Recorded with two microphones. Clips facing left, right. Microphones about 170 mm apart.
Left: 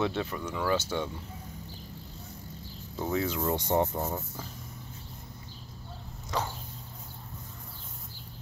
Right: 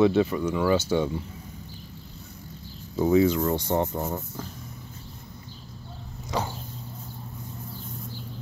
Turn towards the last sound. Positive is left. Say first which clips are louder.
# right 3 dB
turn(degrees=-10)  # may be behind; listen again after turning